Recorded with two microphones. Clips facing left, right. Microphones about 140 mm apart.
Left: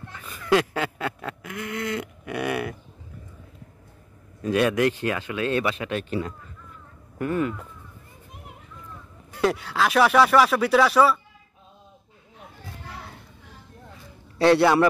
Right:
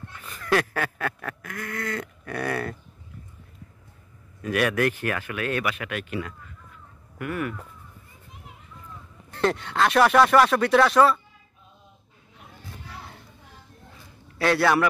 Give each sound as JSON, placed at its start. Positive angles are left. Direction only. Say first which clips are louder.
{"t": 0.3, "sound": "a sound", "louder": "left 3 dB", "side_deg": 15}
{"t": 4.4, "sound": "speech", "louder": "left 2 dB", "side_deg": 25}
{"t": 9.3, "sound": "speech", "louder": "left 1 dB", "side_deg": 5}
{"t": 14.4, "sound": "speech", "louder": "left 4 dB", "side_deg": 25}